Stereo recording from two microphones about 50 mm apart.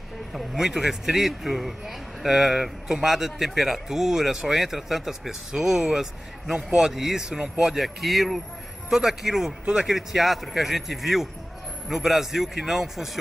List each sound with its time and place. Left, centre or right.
0.3 s a man's voice: centre
7.7 s a man's voice: centre